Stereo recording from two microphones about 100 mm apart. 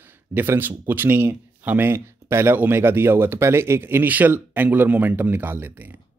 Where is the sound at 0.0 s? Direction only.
20° right (ahead or behind).